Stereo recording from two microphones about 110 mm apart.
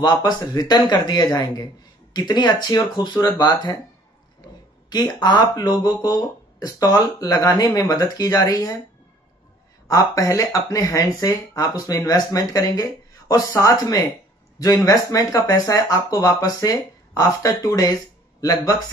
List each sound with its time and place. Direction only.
0.0 s speech: 40° left (ahead or behind)
4.8 s speech: 40° left (ahead or behind)
9.8 s speech: 30° left (ahead or behind)